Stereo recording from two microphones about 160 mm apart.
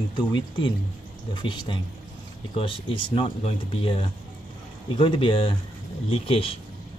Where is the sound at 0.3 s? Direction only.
30° left (ahead or behind).